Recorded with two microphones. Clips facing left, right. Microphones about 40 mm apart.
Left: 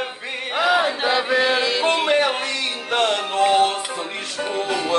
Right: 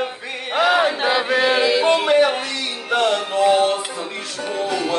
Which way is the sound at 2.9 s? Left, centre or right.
Left.